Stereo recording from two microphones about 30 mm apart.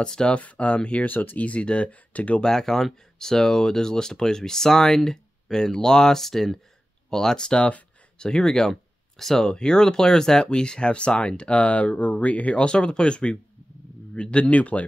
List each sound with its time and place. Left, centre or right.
0.0 s speech: left
0.7 s speech: left
1.0 s speech: left
1.4 s speech: left
2.4 s speech: centre
6.2 s speech: centre
7.4 s speech: left; by 9.5 s centre
9.5 s speech: left
12.5 s speech: left
14.4 s speech: left